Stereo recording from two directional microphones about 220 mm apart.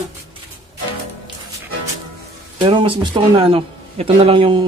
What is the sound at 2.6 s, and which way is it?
A man's voice, 25° right (ahead or behind).